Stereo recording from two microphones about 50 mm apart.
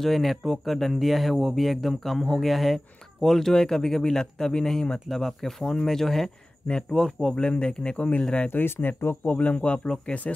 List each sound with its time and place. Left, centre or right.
0.0 s a man's voice: centre; by 8.2 s left
8.5 s speech: left
9.2 s speech: left